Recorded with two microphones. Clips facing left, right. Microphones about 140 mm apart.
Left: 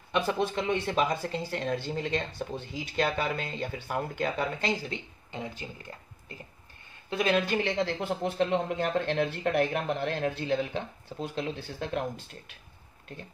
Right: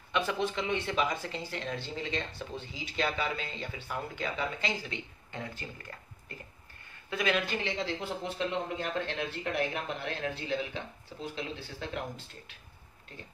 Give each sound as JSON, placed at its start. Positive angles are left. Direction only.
{"t": 0.1, "sound": "speech", "side_deg": 40}
{"t": 5.3, "sound": "speech", "side_deg": 15}
{"t": 7.1, "sound": "speech", "side_deg": 30}
{"t": 7.3, "sound": "speech", "side_deg": 55}